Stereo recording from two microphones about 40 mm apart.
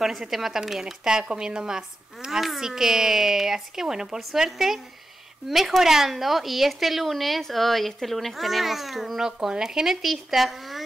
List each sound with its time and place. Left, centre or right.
0.0 s speech: centre
9.2 s speech: centre